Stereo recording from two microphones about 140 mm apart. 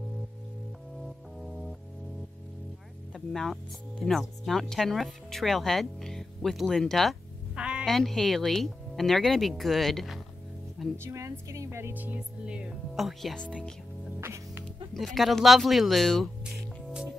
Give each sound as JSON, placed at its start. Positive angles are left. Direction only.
{"t": 1.4, "sound": "music", "side_deg": 0}
{"t": 3.1, "sound": "music", "side_deg": 5}
{"t": 4.0, "sound": "speech", "side_deg": 0}
{"t": 11.1, "sound": "music", "side_deg": -20}
{"t": 14.2, "sound": "music", "side_deg": -20}
{"t": 15.0, "sound": "speech", "side_deg": 0}